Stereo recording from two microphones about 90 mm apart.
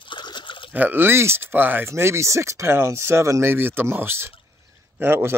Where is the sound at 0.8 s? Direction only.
20° right (ahead or behind).